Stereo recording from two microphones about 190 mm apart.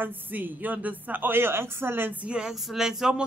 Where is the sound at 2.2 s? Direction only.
5° right (ahead or behind).